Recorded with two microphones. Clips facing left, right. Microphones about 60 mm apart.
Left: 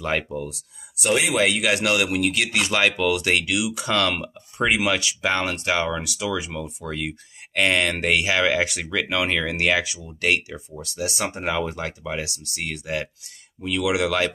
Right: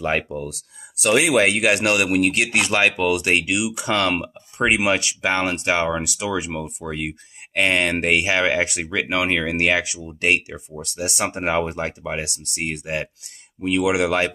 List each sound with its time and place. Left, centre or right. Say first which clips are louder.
0.0 s speech: right 2 dB; right
1.0 s speech: right 4 dB; right
1.4 s speech: right 3 dB; right
2.7 s speech: right 1 dB; right
3.8 s speech: right 2 dB; right
5.2 s speech: right 2 dB; right
10.8 s speech: right 2 dB; right